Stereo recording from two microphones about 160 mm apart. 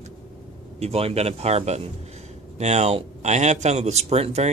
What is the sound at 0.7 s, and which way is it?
A man's voice, 40° right (ahead or behind).